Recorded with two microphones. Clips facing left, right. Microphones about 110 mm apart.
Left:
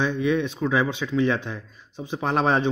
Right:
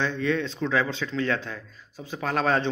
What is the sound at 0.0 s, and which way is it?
A man's voice, 15° left (ahead or behind).